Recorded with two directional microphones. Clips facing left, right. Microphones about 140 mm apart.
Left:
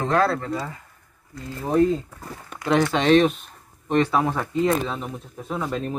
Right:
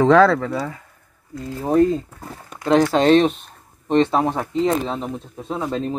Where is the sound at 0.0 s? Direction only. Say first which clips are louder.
Right 8 dB; 90° right.